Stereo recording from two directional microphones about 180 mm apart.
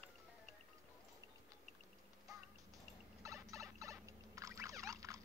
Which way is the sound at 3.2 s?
15° right (ahead or behind).